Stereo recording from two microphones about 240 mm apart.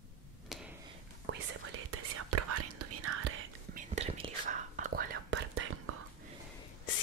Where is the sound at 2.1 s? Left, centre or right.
Right.